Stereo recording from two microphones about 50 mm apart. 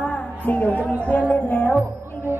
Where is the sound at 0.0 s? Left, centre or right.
Left.